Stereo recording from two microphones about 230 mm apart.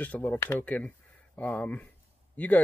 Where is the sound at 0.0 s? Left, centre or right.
Centre.